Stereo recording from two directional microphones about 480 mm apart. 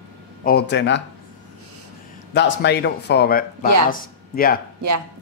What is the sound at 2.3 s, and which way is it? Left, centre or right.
A woman's voice, left.